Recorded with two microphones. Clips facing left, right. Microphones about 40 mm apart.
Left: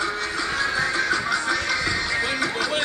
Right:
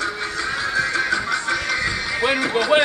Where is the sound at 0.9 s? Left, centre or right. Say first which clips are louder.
Right 1 dB; centre.